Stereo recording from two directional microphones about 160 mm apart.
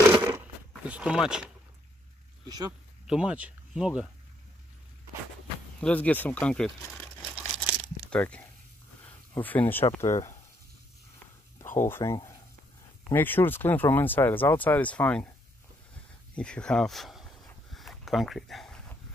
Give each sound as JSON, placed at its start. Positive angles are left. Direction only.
{"t": 0.1, "sound": "a sound", "side_deg": -20}
{"t": 0.8, "sound": "speech", "side_deg": -5}
{"t": 2.4, "sound": "speech", "side_deg": -25}
{"t": 3.1, "sound": "speech", "side_deg": -5}
{"t": 5.8, "sound": "speech", "side_deg": 10}
{"t": 7.2, "sound": "crumpling", "side_deg": 5}
{"t": 9.0, "sound": "a sound", "side_deg": 10}
{"t": 9.9, "sound": "speech", "side_deg": 20}
{"t": 11.6, "sound": "a sound", "side_deg": 55}
{"t": 11.9, "sound": "speech", "side_deg": 20}
{"t": 16.3, "sound": "speech", "side_deg": 5}
{"t": 17.7, "sound": "a sound", "side_deg": 0}